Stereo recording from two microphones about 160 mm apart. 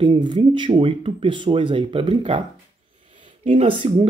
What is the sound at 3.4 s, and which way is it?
Speech, 45° right (ahead or behind).